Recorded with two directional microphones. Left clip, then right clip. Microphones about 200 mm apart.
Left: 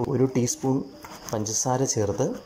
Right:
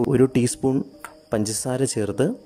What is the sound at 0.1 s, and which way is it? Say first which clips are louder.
Speech: right 4 dB; 55° right (ahead or behind).